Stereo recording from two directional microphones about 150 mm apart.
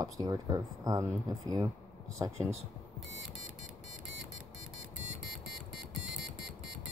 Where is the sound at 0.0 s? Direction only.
25° right (ahead or behind).